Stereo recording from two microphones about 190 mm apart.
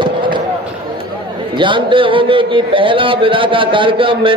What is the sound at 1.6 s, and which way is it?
A man's voice, 25° right (ahead or behind).